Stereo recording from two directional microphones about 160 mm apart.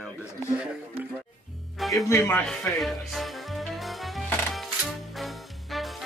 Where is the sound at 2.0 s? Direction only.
15° left (ahead or behind).